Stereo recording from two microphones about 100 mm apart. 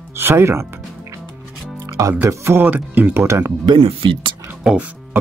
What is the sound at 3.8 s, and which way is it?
Speech, 65° right (ahead or behind).